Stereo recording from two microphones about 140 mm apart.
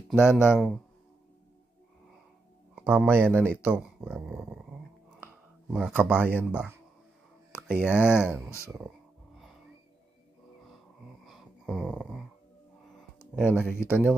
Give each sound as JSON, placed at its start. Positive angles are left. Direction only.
{"t": 0.2, "sound": "speech", "side_deg": 15}
{"t": 2.7, "sound": "speech", "side_deg": -10}
{"t": 4.3, "sound": "dog", "side_deg": -5}
{"t": 5.7, "sound": "speech", "side_deg": -5}
{"t": 8.0, "sound": "speech", "side_deg": 15}
{"t": 11.2, "sound": "a sound", "side_deg": 0}
{"t": 13.4, "sound": "speech", "side_deg": -15}